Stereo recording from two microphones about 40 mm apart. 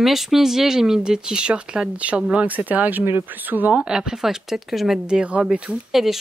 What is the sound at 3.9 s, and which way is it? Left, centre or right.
Speech, centre.